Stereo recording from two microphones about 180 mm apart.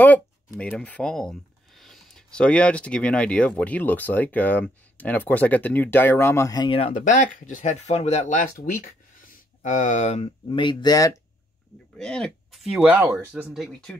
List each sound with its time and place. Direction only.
0.6 s speech: 5° left (ahead or behind); by 6.9 s 25° left (ahead or behind)
6.9 s speech: 45° left (ahead or behind); by 11.1 s 20° left (ahead or behind)
12.0 s speech: 5° left (ahead or behind)